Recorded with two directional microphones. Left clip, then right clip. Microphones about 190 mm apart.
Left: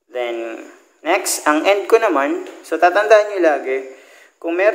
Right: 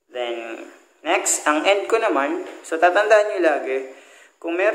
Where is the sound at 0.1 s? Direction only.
40° left (ahead or behind).